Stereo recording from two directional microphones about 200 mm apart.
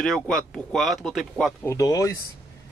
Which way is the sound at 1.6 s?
15° left (ahead or behind).